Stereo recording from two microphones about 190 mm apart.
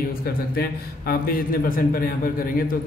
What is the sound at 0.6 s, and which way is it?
A man's voice, 50° left (ahead or behind).